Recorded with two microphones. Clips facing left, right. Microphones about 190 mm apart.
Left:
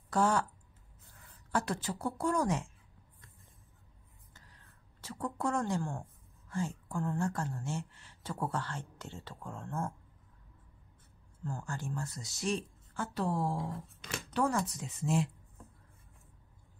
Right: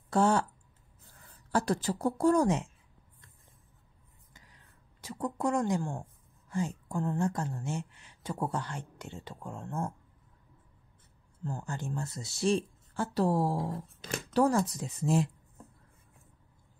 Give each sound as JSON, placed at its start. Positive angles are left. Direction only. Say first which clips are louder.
{"t": 0.1, "sound": "speech", "louder": "right 3 dB", "side_deg": -25}
{"t": 1.5, "sound": "a woman's voice", "louder": "right 5 dB", "side_deg": -35}
{"t": 4.3, "sound": "a sound", "louder": "right 2 dB", "side_deg": -15}
{"t": 6.5, "sound": "speech", "louder": "right 3 dB", "side_deg": -20}
{"t": 11.4, "sound": "a woman's voice", "louder": "right 2 dB", "side_deg": -20}